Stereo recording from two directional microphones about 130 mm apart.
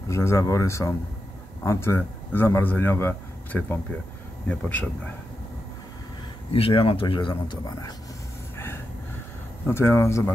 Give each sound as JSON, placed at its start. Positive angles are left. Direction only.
{"t": 0.1, "sound": "speech", "side_deg": 20}
{"t": 6.5, "sound": "speech", "side_deg": 45}
{"t": 9.7, "sound": "speech", "side_deg": 20}